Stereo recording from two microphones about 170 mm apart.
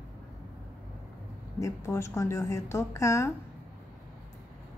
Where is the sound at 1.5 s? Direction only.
15° left (ahead or behind).